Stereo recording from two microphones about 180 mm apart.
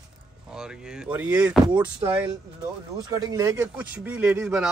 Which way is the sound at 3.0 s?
20° right (ahead or behind).